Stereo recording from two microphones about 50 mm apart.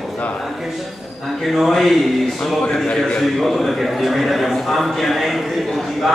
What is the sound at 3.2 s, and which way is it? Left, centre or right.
A man's voice, centre.